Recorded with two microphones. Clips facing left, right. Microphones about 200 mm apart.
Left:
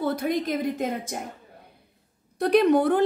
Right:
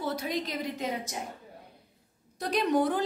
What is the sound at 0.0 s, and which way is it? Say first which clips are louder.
A woman's voice: left 7 dB; 55° left (ahead or behind).